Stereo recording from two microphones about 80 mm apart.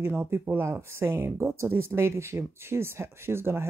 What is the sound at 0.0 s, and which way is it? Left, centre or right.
Speech, right.